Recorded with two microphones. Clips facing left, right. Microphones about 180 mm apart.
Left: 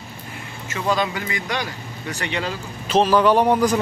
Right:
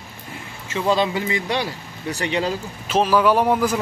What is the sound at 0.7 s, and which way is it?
A man's voice, 25° right (ahead or behind).